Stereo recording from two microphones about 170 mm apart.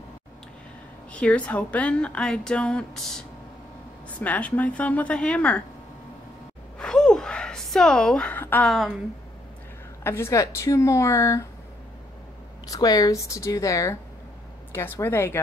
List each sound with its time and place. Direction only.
1.1 s a woman's voice: 10° left (ahead or behind)
6.8 s a sound: 5° left (ahead or behind)
10.0 s a woman's voice: 15° left (ahead or behind)
12.6 s a woman's voice: 20° left (ahead or behind)